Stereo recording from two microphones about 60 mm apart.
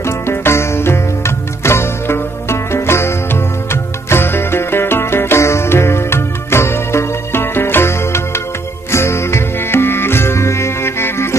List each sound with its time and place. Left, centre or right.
0.0 s music: left